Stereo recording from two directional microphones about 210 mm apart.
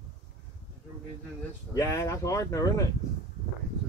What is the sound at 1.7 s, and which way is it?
Speech, 15° left (ahead or behind).